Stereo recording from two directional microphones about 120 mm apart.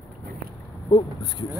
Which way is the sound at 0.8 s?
40° left (ahead or behind).